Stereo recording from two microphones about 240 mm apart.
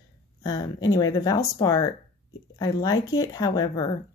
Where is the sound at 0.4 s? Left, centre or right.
Centre.